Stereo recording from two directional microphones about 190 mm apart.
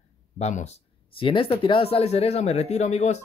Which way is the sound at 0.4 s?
40° left (ahead or behind).